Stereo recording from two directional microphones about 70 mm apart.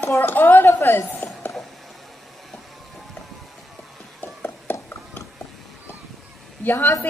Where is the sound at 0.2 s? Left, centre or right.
Left.